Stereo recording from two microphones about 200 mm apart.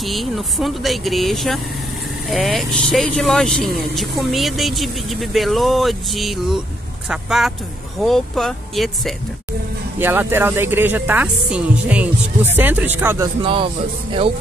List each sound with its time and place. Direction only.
0.0 s speech: centre (ahead or behind)
9.9 s speech: 10° right (ahead or behind)
13.4 s speech: 25° right (ahead or behind)